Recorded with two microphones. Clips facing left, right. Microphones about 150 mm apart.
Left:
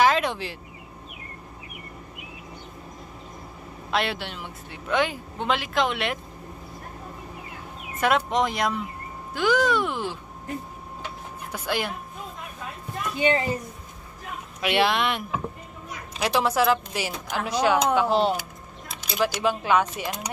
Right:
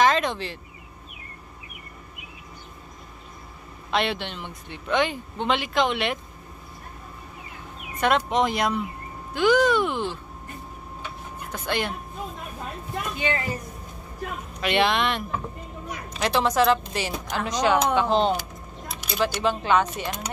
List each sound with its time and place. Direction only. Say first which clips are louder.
0.0 s a sound: even; 10° left (ahead or behind)
3.9 s speech: right 1 dB; centre (ahead or behind)
8.0 s speech: right 1 dB; centre (ahead or behind)
11.5 s speech: even; 5° left (ahead or behind)
13.2 s a woman's voice: left 6 dB; 25° left (ahead or behind)
14.6 s a woman's voice: even; 5° left (ahead or behind)